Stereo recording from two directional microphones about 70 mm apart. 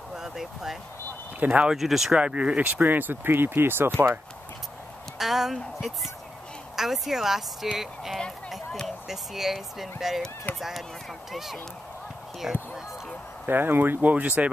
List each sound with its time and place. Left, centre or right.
0.1 s a sound: centre
1.4 s speech: right
1.7 s speech: centre
2.1 s speech: centre; by 3.9 s right
5.2 s speech: centre
13.5 s speech: right